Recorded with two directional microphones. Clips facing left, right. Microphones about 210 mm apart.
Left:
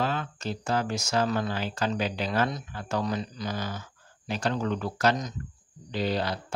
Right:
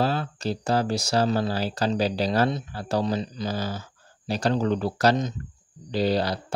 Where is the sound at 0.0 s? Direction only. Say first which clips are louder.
Right 4 dB; 35° right (ahead or behind).